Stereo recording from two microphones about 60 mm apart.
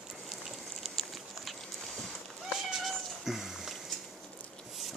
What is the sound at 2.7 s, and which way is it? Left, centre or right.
Cat, centre.